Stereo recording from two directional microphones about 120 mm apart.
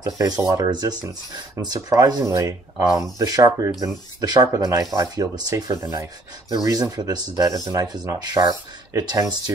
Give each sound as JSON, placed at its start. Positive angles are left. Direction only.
{"t": 0.0, "sound": "speech", "side_deg": -35}